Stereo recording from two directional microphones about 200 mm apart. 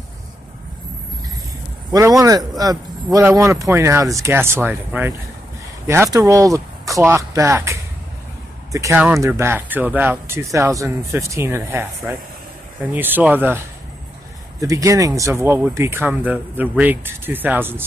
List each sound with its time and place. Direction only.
1.9 s speech: 15° right (ahead or behind)
14.6 s speech: 15° right (ahead or behind)